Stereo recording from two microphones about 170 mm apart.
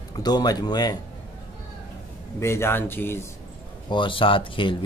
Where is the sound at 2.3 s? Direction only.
15° left (ahead or behind).